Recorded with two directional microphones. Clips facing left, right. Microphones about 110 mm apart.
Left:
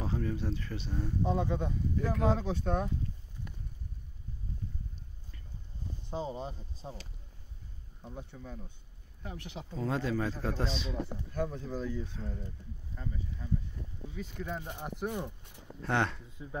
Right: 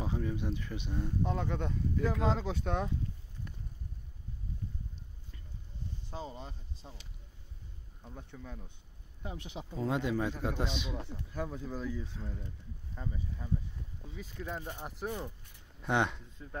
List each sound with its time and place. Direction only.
0.0 s a man's voice: 10° right (ahead or behind)
1.2 s speech: 15° left (ahead or behind)
6.0 s speech: 30° left (ahead or behind)
8.0 s speech: 5° left (ahead or behind)
9.2 s a man's voice: 20° right (ahead or behind); by 15.0 s centre (ahead or behind)
15.0 s speech: 15° left (ahead or behind)
15.8 s a man's voice: 15° right (ahead or behind)
16.4 s speech: 10° left (ahead or behind)